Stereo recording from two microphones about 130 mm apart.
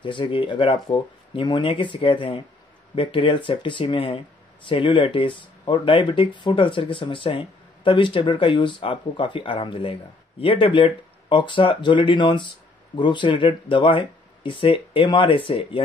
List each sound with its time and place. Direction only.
0.0 s speech: 40° left (ahead or behind)